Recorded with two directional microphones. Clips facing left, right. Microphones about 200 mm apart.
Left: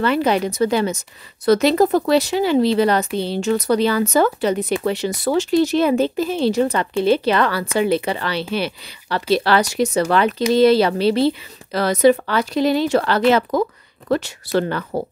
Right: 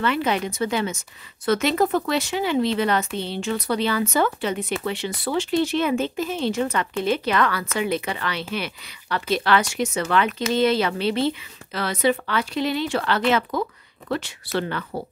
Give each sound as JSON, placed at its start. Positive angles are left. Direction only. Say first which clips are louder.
{"t": 0.0, "sound": "a woman's voice", "louder": "left 5 dB", "side_deg": 40}